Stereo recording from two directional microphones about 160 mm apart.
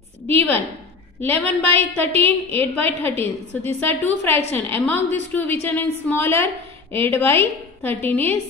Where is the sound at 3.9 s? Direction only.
10° left (ahead or behind).